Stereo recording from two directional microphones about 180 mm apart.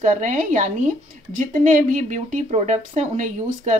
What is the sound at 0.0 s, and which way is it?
A woman's voice, 45° right (ahead or behind).